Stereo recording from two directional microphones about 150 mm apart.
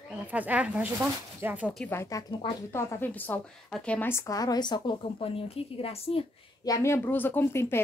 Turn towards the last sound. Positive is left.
turn(degrees=15)  # may be behind; listen again after turning